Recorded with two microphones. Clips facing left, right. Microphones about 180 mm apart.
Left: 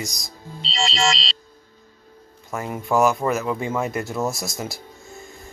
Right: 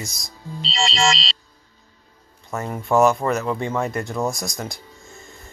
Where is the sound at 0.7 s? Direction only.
85° right.